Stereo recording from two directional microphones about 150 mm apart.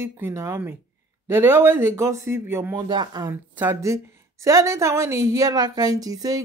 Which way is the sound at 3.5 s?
15° right (ahead or behind).